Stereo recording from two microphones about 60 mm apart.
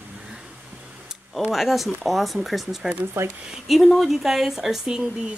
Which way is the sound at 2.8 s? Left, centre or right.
Right.